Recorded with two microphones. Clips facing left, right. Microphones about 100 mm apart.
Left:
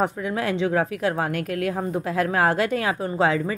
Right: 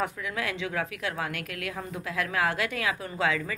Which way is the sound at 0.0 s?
35° left (ahead or behind).